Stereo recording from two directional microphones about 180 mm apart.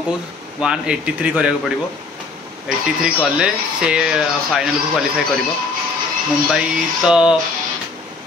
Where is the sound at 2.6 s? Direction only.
5° right (ahead or behind).